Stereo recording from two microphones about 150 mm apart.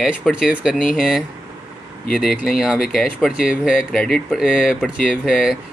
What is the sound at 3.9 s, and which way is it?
Speech, 5° left (ahead or behind).